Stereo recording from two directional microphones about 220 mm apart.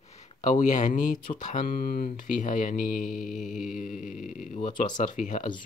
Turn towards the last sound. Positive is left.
turn(degrees=35)  # may be behind; listen again after turning